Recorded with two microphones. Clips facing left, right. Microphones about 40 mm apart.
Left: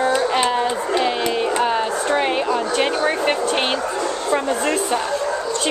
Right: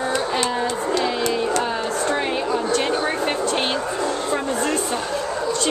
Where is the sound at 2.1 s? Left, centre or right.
Left.